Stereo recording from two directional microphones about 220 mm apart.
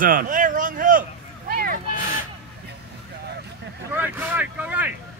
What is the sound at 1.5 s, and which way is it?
Vehicle, 40° right (ahead or behind).